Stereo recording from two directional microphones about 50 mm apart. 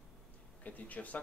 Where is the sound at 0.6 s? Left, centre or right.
Left.